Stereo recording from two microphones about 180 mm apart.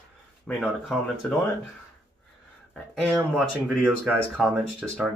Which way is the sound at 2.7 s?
5° left (ahead or behind).